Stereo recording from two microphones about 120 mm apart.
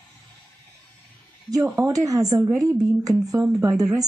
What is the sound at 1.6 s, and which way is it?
A woman's voice, 30° right (ahead or behind).